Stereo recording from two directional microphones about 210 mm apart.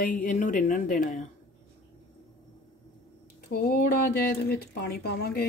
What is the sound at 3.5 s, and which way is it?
Speech, 50° left (ahead or behind).